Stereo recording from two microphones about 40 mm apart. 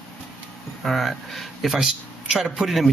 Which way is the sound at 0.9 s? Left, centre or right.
Centre.